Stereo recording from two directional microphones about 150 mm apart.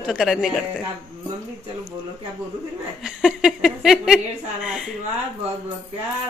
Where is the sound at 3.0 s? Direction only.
5° right (ahead or behind).